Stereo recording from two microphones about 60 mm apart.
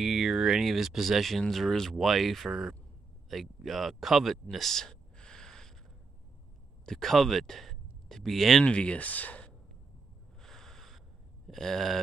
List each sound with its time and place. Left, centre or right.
0.0 s speech: centre
6.9 s speech: centre
8.6 s speech: centre
10.4 s a sound: centre
11.4 s speech: centre